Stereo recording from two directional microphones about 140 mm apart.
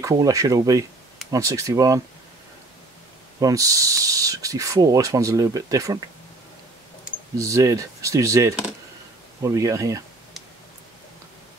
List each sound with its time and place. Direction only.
0.0 s speech: 25° right (ahead or behind)
3.3 s speech: 25° right (ahead or behind)
7.3 s speech: 20° right (ahead or behind)